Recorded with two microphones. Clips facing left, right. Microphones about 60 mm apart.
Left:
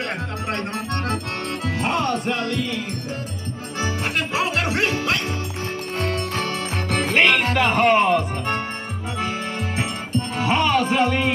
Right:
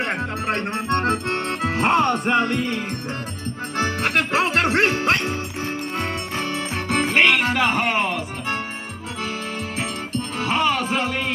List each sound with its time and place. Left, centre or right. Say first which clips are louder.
0.0 s music: right 3 dB; right
3.7 s music: right 3 dB; right
5.9 s music: left 5 dB; right; by 8.5 s centre
9.8 s music: left 2 dB; centre